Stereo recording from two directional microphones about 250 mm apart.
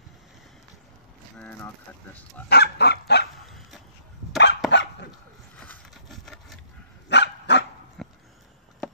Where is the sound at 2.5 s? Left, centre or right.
Left.